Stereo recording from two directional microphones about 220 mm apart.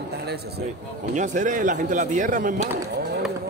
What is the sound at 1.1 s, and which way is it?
Speech, 35° right (ahead or behind).